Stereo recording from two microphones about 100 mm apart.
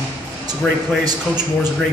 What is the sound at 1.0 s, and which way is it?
Speech, 40° right (ahead or behind).